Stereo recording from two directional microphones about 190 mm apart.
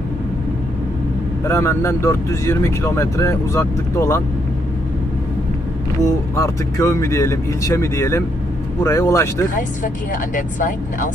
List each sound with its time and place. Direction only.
1.4 s speech: 15° left (ahead or behind)
6.3 s speech: 15° left (ahead or behind)
10.3 s speech: 45° left (ahead or behind)